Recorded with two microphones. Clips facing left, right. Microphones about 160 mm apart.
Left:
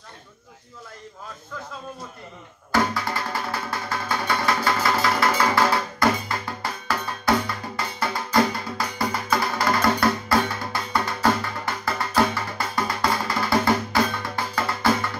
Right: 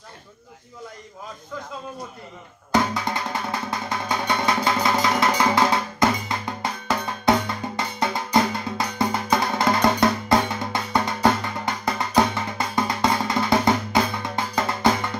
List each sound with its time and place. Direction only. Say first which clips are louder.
2.7 s music: right 1 dB; 20° right (ahead or behind)